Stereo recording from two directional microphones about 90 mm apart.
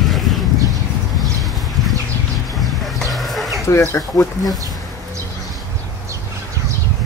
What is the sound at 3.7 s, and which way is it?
Speech, 30° left (ahead or behind).